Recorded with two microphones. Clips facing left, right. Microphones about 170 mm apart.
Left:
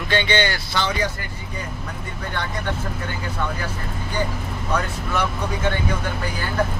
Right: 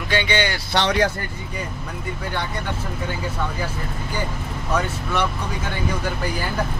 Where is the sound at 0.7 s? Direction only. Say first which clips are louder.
Right 5 dB; 75° right (ahead or behind).